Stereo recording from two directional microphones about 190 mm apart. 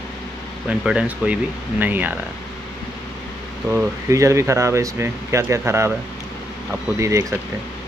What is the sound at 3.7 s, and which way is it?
Speech, 15° right (ahead or behind).